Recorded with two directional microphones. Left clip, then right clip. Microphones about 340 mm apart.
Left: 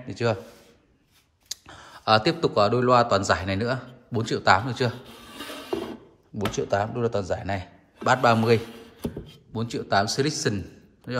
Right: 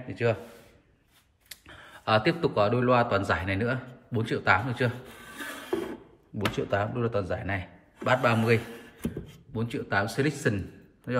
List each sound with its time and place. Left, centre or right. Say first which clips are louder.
0.1 s speech: left 2 dB; centre
2.0 s speech: left 4 dB; centre
5.4 s a sound: left 1 dB; centre
6.3 s speech: left 3 dB; centre